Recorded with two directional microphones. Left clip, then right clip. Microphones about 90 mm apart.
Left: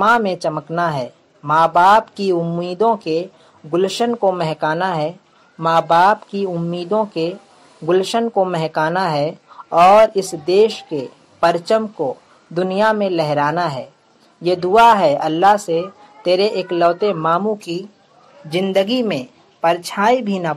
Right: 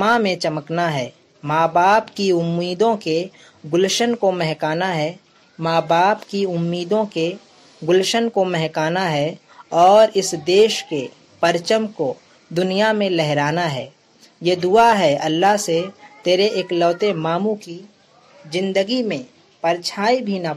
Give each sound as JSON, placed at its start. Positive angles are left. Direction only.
{"t": 0.0, "sound": "speech", "side_deg": -35}
{"t": 17.7, "sound": "speech", "side_deg": -20}